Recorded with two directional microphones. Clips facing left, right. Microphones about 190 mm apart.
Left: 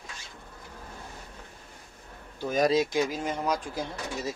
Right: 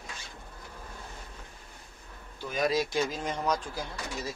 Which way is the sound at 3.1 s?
10° left (ahead or behind).